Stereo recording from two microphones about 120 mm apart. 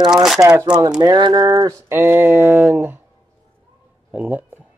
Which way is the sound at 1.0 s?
35° right (ahead or behind).